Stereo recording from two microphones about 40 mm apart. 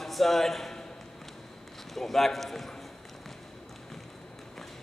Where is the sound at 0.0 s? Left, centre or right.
Centre.